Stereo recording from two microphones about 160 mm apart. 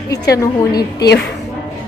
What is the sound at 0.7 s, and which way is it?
Speech, 85° left.